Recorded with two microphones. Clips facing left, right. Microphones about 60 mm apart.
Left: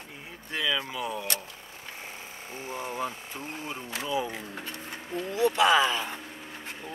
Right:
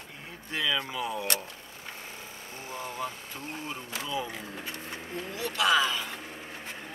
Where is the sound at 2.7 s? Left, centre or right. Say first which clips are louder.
Left 2 dB; centre.